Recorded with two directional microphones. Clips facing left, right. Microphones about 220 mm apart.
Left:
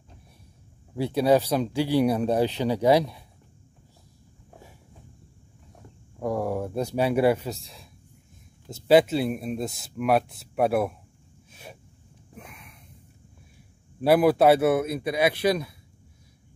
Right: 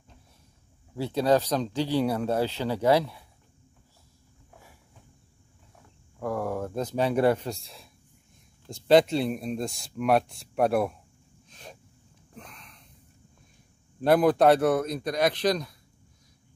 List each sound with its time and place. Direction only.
0.9 s speech: 10° left (ahead or behind)
6.1 s speech: 15° left (ahead or behind)
11.5 s a sound: 5° left (ahead or behind)
12.4 s snort: 10° left (ahead or behind)
14.0 s speech: 5° left (ahead or behind)